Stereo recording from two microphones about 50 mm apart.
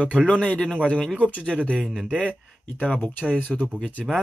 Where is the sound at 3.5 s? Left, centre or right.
Centre.